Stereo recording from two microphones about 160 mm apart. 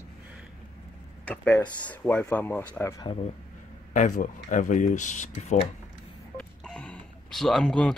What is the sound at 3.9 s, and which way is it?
Speech, 50° left (ahead or behind).